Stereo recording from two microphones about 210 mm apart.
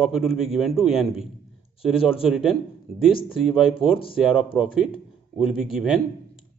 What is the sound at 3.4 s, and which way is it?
A man's voice, centre (ahead or behind).